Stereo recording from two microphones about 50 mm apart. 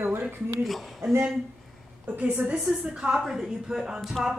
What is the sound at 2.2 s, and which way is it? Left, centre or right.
A woman's voice, right.